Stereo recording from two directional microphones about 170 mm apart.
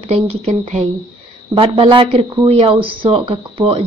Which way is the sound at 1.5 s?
30° right (ahead or behind).